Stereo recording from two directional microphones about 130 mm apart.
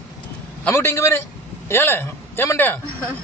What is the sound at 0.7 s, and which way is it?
A man's voice, 20° left (ahead or behind).